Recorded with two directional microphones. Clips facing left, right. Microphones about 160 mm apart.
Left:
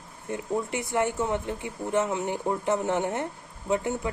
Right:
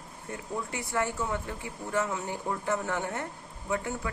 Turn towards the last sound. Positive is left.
turn(degrees=20)  # may be behind; listen again after turning